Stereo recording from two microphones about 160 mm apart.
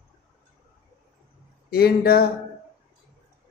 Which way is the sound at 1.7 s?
75° left (ahead or behind).